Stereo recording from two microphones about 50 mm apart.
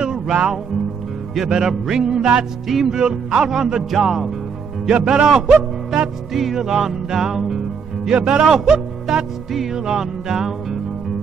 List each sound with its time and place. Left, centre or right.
0.0 s music: centre
4.8 s speech: centre
6.3 s music: centre
8.2 s speech: right
8.5 s music: centre
9.1 s music: centre
9.8 s music: centre